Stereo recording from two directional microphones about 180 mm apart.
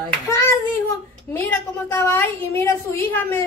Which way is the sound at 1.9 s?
10° left (ahead or behind).